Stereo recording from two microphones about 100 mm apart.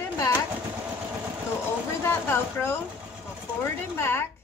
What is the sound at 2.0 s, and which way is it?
Speech, 25° left (ahead or behind).